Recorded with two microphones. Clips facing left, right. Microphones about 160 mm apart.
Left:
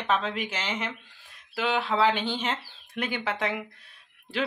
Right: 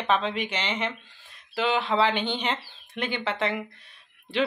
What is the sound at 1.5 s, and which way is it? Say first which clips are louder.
Speech: right 2 dB; 5° left (ahead or behind).